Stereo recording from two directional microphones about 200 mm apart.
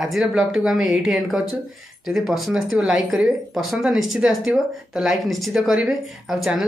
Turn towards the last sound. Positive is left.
turn(degrees=0)  # may be behind; listen again after turning